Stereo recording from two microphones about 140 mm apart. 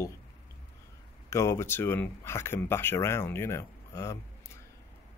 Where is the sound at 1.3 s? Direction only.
20° left (ahead or behind).